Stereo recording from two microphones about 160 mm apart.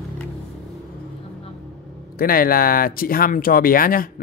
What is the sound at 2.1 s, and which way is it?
Speech, 65° left (ahead or behind).